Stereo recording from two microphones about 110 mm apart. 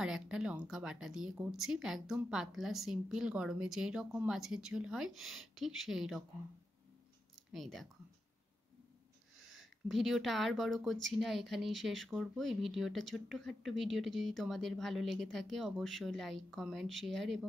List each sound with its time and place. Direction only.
0.0 s speech: 5° right (ahead or behind)
7.5 s speech: centre (ahead or behind)
9.5 s speech: centre (ahead or behind)